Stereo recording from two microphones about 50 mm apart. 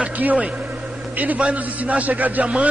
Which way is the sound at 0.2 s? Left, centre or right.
Right.